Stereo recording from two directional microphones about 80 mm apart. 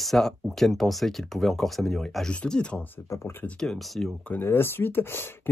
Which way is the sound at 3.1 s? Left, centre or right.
Left.